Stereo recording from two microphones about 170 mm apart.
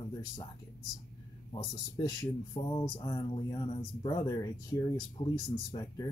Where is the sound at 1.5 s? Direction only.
25° left (ahead or behind).